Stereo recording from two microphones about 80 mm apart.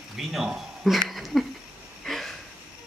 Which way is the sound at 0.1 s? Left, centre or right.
Centre.